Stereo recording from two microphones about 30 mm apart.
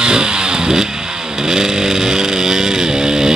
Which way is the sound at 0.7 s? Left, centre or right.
Centre.